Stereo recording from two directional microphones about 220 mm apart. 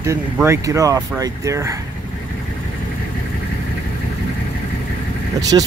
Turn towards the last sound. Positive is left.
turn(degrees=-15)  # may be behind; listen again after turning